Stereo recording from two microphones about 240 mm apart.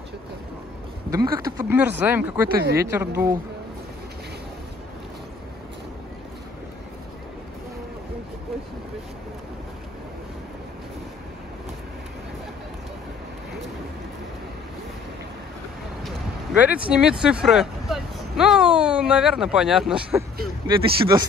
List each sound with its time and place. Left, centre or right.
1.1 s speech: centre
16.0 s a sound: centre
16.9 s speech: centre
20.6 s speech: centre